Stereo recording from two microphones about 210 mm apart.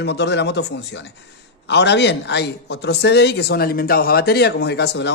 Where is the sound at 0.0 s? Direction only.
55° left (ahead or behind).